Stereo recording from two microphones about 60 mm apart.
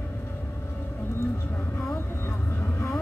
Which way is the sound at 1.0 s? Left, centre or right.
Left.